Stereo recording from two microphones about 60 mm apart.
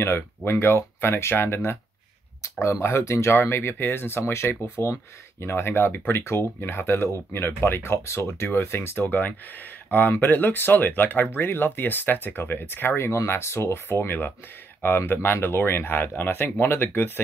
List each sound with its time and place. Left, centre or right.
0.5 s speech: left
9.8 s speech: left